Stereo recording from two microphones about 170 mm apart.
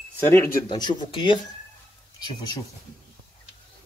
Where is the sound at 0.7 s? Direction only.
25° left (ahead or behind).